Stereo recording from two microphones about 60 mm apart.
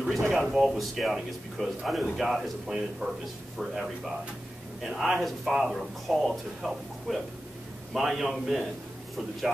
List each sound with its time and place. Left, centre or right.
0.3 s speech: centre